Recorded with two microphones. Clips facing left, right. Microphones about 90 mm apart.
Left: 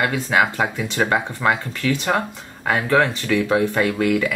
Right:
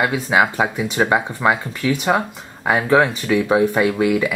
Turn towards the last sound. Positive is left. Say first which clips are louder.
# right 2 dB
turn(degrees=-15)  # may be behind; listen again after turning